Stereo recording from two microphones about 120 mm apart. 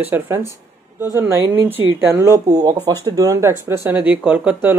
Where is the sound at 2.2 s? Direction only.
30° right (ahead or behind).